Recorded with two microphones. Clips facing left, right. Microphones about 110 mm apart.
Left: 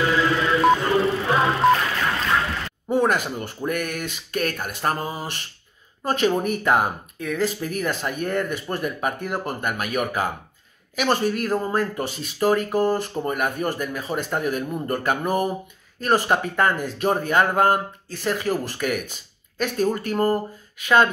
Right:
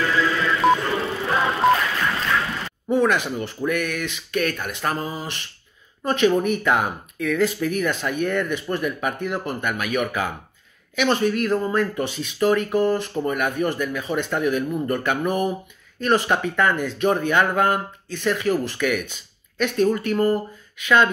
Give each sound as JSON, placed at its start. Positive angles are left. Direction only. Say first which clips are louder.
{"t": 0.6, "sound": "music", "louder": "left 2 dB", "side_deg": 0}
{"t": 2.9, "sound": "speech", "louder": "right 1 dB", "side_deg": 40}